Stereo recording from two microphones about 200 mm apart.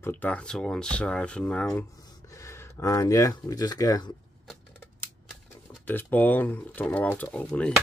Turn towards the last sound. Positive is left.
turn(degrees=5)  # may be behind; listen again after turning